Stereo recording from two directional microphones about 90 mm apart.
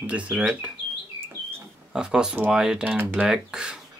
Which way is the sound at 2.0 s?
10° right (ahead or behind).